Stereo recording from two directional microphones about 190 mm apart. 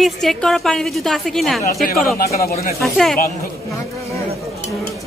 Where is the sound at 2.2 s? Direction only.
50° left (ahead or behind).